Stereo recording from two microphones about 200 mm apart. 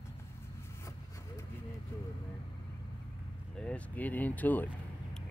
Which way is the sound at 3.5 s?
5° left (ahead or behind).